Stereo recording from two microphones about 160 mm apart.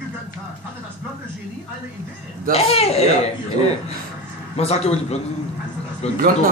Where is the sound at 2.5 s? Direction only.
40° left (ahead or behind).